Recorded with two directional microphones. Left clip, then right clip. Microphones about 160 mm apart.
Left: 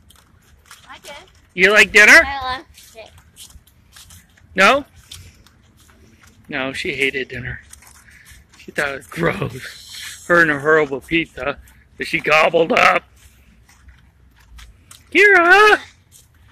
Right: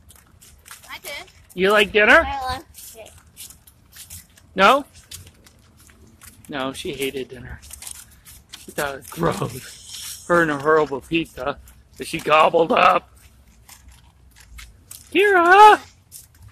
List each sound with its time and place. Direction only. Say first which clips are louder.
0.9 s speech: right 5 dB; 10° right (ahead or behind)
4.6 s speech: left 2 dB; 5° right (ahead or behind)
6.5 s speech: left 5 dB; centre (ahead or behind)
8.7 s speech: left 4 dB; centre (ahead or behind)
10.2 s speech: left 4 dB; 15° left (ahead or behind)
10.8 s speech: left 3 dB; 5° left (ahead or behind)
15.0 s speech: left 4 dB; centre (ahead or behind)